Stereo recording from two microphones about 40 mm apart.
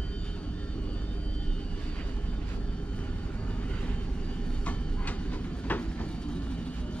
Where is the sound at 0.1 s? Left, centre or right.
Left.